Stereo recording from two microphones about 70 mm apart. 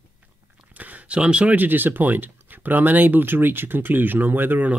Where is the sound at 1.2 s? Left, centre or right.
Centre.